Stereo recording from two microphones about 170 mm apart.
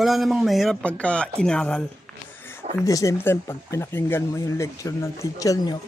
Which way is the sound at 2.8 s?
20° left (ahead or behind).